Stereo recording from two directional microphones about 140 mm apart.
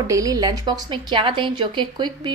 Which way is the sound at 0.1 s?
25° right (ahead or behind).